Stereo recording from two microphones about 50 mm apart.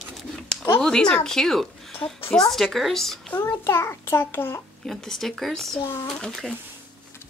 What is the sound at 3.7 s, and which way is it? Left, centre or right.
Speech, left.